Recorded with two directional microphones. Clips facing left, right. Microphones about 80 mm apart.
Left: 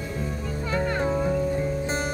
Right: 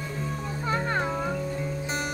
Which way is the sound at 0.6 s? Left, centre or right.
Right.